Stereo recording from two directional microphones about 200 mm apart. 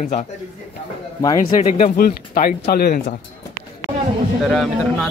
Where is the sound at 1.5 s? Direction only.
30° left (ahead or behind).